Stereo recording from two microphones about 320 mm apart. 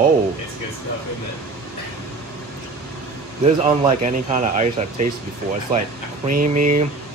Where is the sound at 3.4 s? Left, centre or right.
Right.